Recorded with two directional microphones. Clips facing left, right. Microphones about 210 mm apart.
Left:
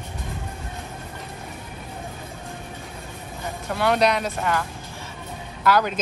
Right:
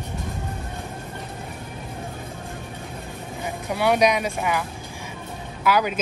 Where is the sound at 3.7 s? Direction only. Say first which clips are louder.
Right 1 dB; 10° right (ahead or behind).